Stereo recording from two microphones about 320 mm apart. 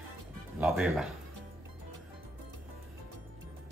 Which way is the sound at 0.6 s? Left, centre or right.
Centre.